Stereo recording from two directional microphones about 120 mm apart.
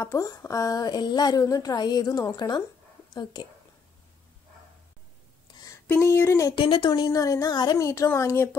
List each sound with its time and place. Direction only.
0.0 s a woman's voice: 25° left (ahead or behind)
5.9 s speech: 20° left (ahead or behind)
6.5 s speech: 45° left (ahead or behind)
6.9 s speech: 30° left (ahead or behind)